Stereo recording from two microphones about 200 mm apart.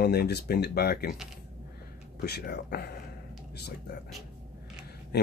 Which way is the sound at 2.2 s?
55° left (ahead or behind).